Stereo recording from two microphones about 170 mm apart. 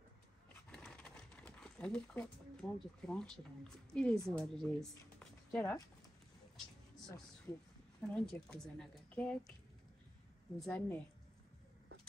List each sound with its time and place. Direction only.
0.7 s speech: 5° left (ahead or behind)
7.5 s a woman's voice: 15° left (ahead or behind)
8.1 s a woman's voice: 5° left (ahead or behind)
10.6 s a woman's voice: 10° left (ahead or behind)